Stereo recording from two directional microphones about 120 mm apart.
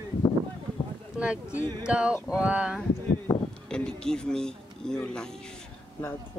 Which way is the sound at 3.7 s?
5° left (ahead or behind).